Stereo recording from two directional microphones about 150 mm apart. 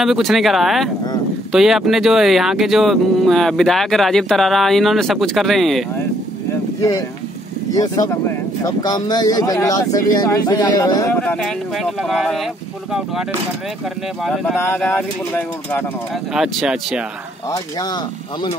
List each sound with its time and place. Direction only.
0.0 s speech: centre (ahead or behind)
7.7 s speech: 25° left (ahead or behind)
11.1 s speech: 5° left (ahead or behind)
14.2 s speech: centre (ahead or behind)
14.6 s speech: 15° left (ahead or behind)
16.3 s speech: 5° right (ahead or behind)
17.5 s speech: 25° left (ahead or behind)